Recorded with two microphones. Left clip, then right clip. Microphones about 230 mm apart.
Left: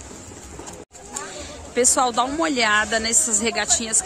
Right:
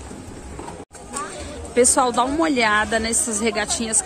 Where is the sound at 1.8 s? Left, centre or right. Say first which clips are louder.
Right 2 dB; centre.